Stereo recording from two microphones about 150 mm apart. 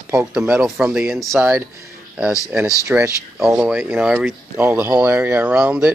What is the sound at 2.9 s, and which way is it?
Speech, 10° right (ahead or behind).